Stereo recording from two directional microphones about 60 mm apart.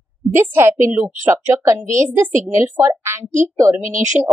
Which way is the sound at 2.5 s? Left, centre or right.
Right.